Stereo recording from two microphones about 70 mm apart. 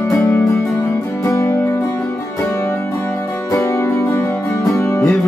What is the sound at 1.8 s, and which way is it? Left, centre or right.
Music, left.